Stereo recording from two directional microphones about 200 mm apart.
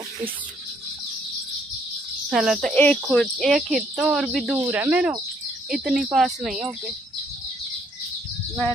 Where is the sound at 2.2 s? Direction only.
5° right (ahead or behind).